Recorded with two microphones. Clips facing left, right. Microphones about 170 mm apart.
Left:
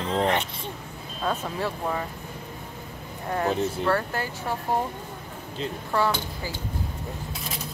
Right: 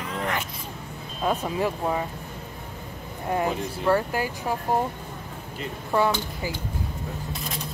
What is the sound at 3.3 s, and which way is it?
Speech, 15° right (ahead or behind).